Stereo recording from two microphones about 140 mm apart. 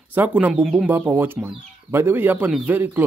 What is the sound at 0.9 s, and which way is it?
Speech, 15° right (ahead or behind).